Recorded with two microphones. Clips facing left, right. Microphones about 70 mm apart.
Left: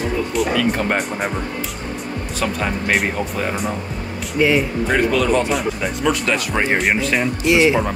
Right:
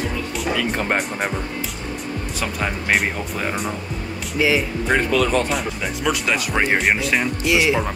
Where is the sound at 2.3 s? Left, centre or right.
Centre.